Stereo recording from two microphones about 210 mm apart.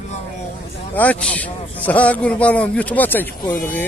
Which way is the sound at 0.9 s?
5° left (ahead or behind).